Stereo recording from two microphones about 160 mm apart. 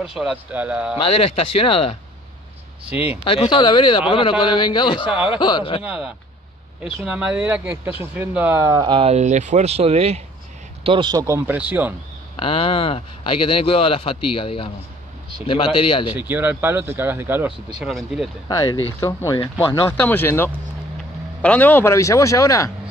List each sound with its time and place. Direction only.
0.0 s speech: 5° right (ahead or behind)
1.6 s speech: 35° left (ahead or behind)
2.9 s speech: 10° right (ahead or behind)
3.3 s speech: 30° left (ahead or behind)
5.0 s speech: 5° right (ahead or behind)
5.3 s speech: 30° left (ahead or behind)
5.9 s speech: 5° right (ahead or behind)
12.4 s speech: 35° left (ahead or behind)
16.1 s speech: 10° right (ahead or behind)
17.8 s speech: centre (ahead or behind)
18.5 s a man's voice: 25° left (ahead or behind)